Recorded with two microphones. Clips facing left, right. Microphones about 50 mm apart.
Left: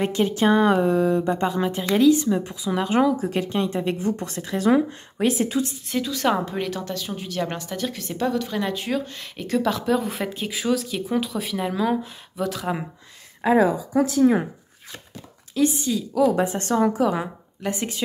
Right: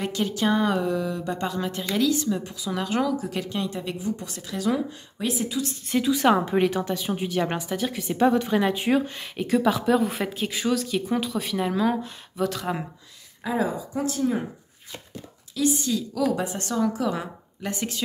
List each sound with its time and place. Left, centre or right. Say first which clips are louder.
0.0 s speech: left 5 dB; left
3.2 s speech: left 5 dB; left
4.0 s speech: left 5 dB; left
6.0 s a woman's voice: right 3 dB; centre
8.3 s speech: right 2 dB; right; by 12.8 s centre
13.4 s speech: left 9 dB; left
15.5 s speech: left 3 dB; left
15.9 s a woman's voice: left 4 dB; centre
16.3 s speech: left 5 dB; left